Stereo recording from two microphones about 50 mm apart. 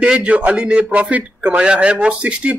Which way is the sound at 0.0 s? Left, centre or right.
Right.